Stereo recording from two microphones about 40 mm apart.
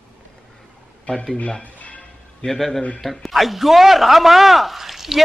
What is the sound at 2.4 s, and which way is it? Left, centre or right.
Speech, left.